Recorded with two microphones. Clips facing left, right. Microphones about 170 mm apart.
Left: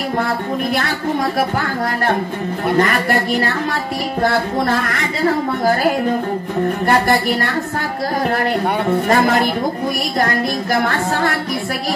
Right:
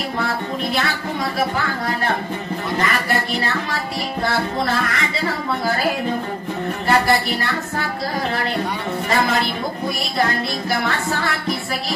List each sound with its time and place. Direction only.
2.8 s a man's voice: 50° left (ahead or behind)
6.9 s a man's voice: 50° left (ahead or behind)
9.1 s a man's voice: 50° left (ahead or behind)